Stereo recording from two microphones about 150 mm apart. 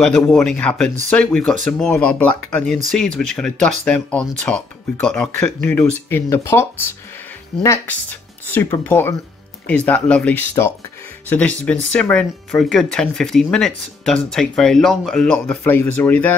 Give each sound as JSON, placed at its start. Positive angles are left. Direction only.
{"t": 0.0, "sound": "speech", "side_deg": 5}